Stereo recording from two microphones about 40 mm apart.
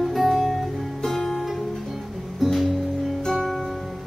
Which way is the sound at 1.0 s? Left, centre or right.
Centre.